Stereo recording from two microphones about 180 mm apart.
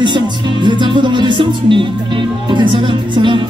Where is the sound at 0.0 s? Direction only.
25° right (ahead or behind).